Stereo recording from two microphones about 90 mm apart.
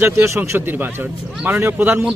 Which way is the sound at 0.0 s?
30° right (ahead or behind).